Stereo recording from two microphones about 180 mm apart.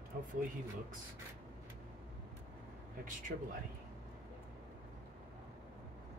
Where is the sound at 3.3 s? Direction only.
55° right (ahead or behind).